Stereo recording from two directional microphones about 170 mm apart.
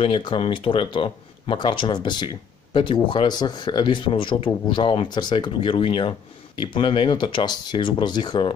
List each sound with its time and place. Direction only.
0.0 s speech: 30° left (ahead or behind)